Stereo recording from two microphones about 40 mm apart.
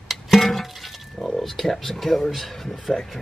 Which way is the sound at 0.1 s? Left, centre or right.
Centre.